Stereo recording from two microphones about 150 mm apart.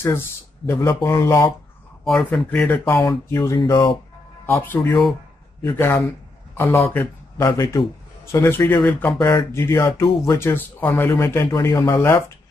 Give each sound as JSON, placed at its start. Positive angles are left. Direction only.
{"t": 0.7, "sound": "speech", "side_deg": 20}
{"t": 2.0, "sound": "speech", "side_deg": 0}
{"t": 4.5, "sound": "a man's voice", "side_deg": 10}